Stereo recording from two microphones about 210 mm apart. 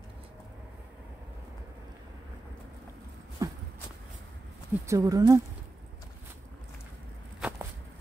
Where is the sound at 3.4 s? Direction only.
15° right (ahead or behind).